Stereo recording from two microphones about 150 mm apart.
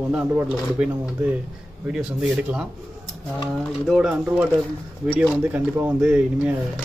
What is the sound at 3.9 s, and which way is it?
Speech, 5° right (ahead or behind).